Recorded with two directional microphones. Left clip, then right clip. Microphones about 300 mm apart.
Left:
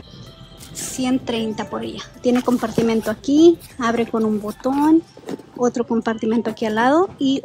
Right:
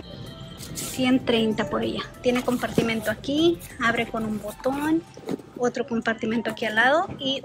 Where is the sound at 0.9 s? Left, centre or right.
Centre.